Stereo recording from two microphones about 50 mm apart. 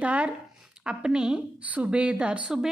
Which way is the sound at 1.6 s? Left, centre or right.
Right.